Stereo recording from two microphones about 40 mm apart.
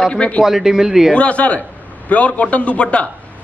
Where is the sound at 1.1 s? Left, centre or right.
Left.